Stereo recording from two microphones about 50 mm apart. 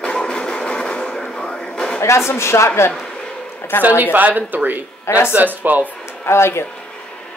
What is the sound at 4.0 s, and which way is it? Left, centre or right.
Speech, right.